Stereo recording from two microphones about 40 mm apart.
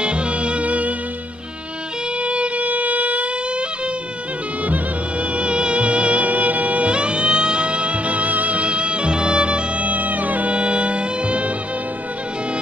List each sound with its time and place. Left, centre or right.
0.0 s music: right
2.2 s music: right
5.3 s music: right
9.8 s music: right
10.5 s music: right